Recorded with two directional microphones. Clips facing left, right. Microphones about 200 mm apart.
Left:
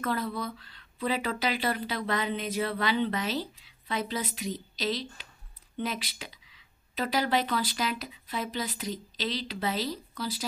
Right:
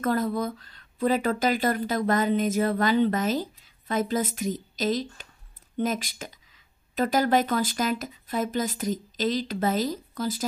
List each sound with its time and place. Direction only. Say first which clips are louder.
0.0 s speech: right 6 dB; 45° right (ahead or behind)